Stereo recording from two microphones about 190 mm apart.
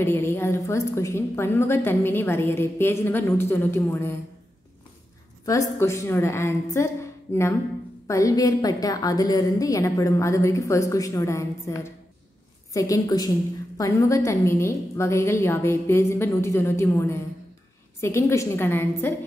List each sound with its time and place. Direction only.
0.0 s a woman's voice: 10° left (ahead or behind)
5.4 s a woman's voice: 15° left (ahead or behind)